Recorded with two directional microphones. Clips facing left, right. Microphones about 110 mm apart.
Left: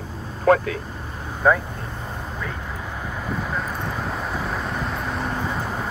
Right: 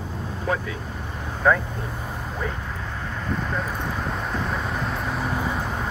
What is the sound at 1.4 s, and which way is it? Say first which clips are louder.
Speech: left 1 dB; 15° left (ahead or behind).